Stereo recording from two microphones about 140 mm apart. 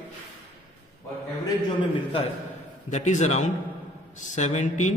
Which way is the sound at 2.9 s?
55° left (ahead or behind).